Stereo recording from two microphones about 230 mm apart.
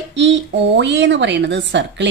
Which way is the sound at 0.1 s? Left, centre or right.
Right.